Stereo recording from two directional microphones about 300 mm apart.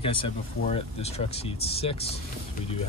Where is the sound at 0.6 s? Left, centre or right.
Left.